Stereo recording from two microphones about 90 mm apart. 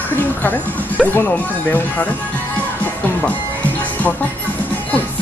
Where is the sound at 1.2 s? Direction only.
20° left (ahead or behind).